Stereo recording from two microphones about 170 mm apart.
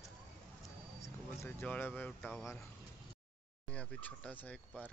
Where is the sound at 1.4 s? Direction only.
10° left (ahead or behind).